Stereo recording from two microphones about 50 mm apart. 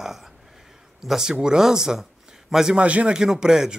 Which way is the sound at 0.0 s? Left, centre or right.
Centre.